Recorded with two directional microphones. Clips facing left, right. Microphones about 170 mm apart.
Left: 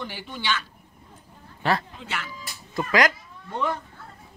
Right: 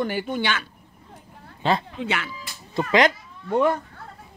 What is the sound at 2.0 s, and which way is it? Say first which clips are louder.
Speech: right 7 dB; 70° right (ahead or behind).